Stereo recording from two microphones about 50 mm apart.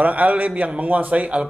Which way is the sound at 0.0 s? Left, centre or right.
Right.